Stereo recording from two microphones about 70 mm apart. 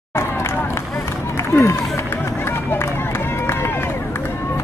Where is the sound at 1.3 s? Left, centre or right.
Left.